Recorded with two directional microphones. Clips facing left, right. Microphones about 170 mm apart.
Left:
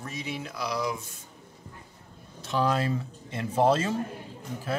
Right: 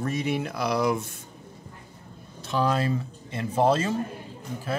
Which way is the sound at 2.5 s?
40° right (ahead or behind).